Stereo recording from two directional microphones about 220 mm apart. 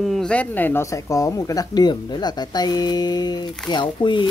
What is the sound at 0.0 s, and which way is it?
Speech, centre (ahead or behind).